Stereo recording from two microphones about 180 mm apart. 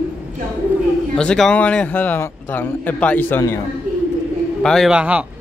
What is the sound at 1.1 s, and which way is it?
A man's voice, 5° left (ahead or behind).